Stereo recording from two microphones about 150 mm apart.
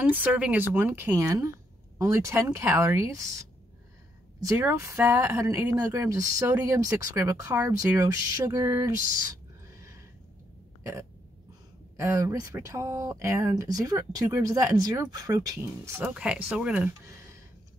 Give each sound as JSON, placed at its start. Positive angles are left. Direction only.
{"t": 0.0, "sound": "speech", "side_deg": -10}
{"t": 4.5, "sound": "speech", "side_deg": -20}
{"t": 10.8, "sound": "burping", "side_deg": -20}
{"t": 12.0, "sound": "speech", "side_deg": -20}
{"t": 16.2, "sound": "speech", "side_deg": -10}